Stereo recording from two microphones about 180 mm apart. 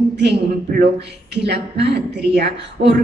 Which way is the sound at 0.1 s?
70° right (ahead or behind).